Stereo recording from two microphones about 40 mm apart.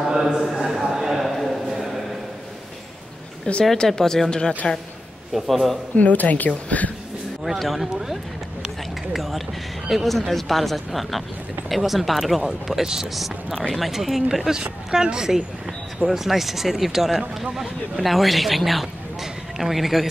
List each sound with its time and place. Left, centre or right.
0.1 s a sound: centre
1.3 s a sound: centre
3.7 s a man's voice: centre
5.3 s speech: centre
5.9 s a woman's voice: left
7.4 s speech: centre
12.8 s speech: centre
13.1 s speech: centre
16.1 s speech: centre